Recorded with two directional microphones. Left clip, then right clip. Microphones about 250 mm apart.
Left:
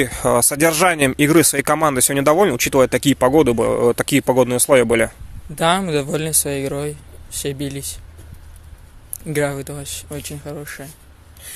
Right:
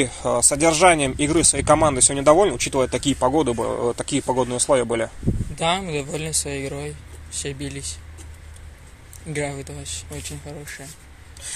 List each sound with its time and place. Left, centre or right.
0.0 s speech: left
9.3 s speech: left